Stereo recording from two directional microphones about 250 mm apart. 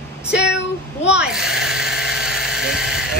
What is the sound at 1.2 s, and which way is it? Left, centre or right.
Electric toothbrush, centre.